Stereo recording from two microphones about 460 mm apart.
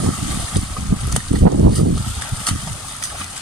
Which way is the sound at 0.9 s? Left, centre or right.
Right.